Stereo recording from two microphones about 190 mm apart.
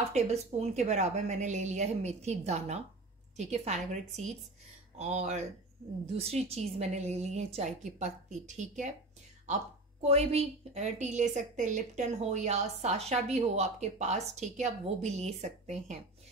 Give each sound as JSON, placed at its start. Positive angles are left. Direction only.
{"t": 0.1, "sound": "a woman's voice", "side_deg": -35}
{"t": 10.0, "sound": "a woman's voice", "side_deg": -35}